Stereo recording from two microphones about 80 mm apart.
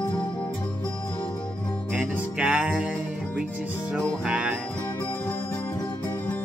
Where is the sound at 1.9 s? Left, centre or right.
Centre.